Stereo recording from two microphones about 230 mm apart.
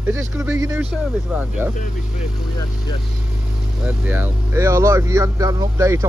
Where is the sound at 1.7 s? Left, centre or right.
Left.